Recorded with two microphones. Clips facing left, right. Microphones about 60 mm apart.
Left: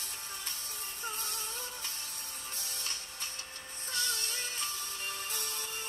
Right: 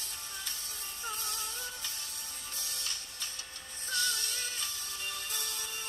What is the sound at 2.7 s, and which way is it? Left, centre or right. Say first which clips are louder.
Music: even; left.